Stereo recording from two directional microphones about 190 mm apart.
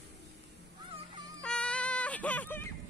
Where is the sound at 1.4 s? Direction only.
5° left (ahead or behind).